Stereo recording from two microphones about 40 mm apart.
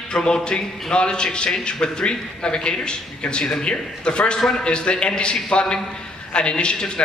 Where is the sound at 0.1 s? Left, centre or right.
Centre.